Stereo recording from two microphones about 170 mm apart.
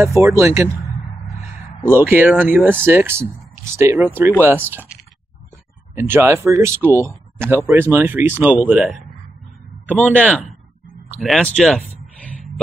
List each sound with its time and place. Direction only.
0.0 s speech: 15° right (ahead or behind)
2.0 s speech: 10° right (ahead or behind)
5.9 s speech: 15° right (ahead or behind)
11.2 s a sound: 5° left (ahead or behind)